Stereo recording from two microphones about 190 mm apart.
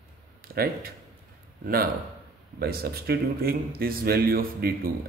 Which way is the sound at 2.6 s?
55° right (ahead or behind).